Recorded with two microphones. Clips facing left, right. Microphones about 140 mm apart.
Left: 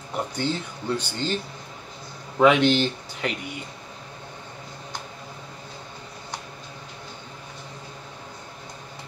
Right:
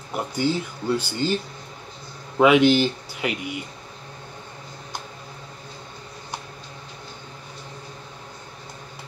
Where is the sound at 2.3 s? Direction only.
10° right (ahead or behind).